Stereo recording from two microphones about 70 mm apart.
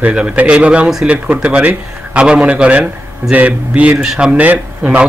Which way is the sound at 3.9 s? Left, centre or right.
Centre.